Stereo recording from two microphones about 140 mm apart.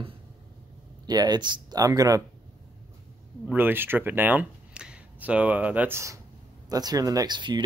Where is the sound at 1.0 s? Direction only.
30° right (ahead or behind).